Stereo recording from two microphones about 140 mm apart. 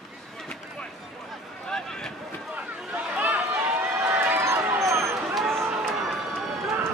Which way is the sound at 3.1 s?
15° right (ahead or behind).